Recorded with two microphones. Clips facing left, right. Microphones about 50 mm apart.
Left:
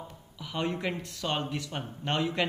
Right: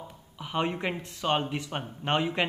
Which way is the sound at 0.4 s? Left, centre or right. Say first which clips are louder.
Right 2 dB; right.